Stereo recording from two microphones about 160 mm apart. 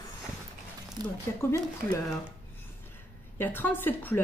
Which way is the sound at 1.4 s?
20° left (ahead or behind).